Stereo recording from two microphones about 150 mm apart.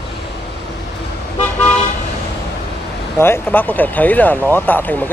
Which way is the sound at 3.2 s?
15° left (ahead or behind).